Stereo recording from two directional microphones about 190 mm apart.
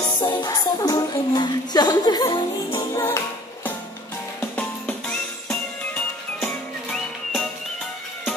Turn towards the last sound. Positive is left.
turn(degrees=5)  # may be behind; listen again after turning